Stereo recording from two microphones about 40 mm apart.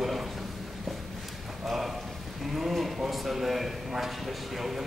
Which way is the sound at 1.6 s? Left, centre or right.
Centre.